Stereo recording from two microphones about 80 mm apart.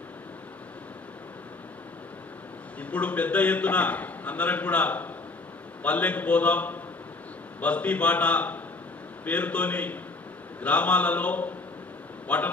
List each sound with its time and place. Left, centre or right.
2.8 s a man's voice: centre